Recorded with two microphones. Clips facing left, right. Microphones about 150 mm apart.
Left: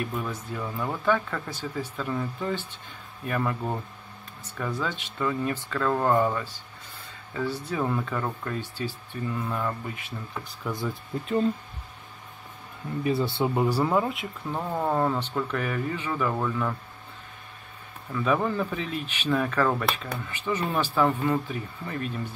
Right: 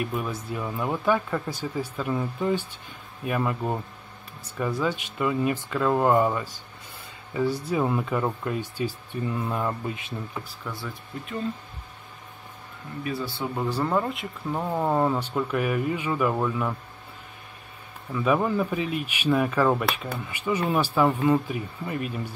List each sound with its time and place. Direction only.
0.0 s speech: 15° right (ahead or behind)
10.6 s speech: 15° left (ahead or behind)
13.0 s speech: 25° left (ahead or behind)
13.7 s speech: 5° left (ahead or behind); by 16.7 s 10° right (ahead or behind)
18.1 s speech: 10° right (ahead or behind)